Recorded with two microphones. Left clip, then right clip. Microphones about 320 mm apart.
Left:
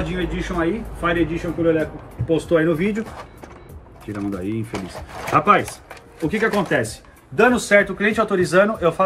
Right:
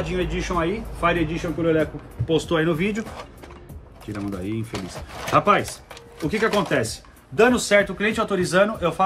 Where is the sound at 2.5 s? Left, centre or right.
Centre.